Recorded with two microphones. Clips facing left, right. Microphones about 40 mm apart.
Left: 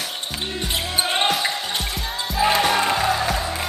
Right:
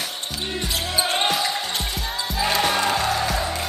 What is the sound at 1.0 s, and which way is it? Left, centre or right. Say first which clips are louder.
Basketball bounce: left 1 dB; centre.